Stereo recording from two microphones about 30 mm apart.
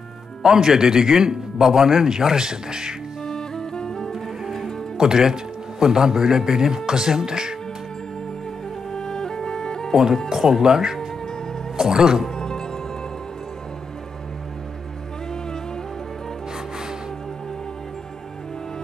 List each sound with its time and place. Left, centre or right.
0.4 s a man's voice: centre
3.3 s music: left
4.1 s music: centre
4.9 s a man's voice: right
8.9 s music: left
10.3 s a man's voice: centre
12.4 s music: left